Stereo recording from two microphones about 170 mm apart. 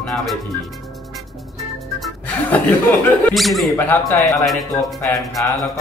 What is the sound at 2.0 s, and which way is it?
Music, 10° left (ahead or behind).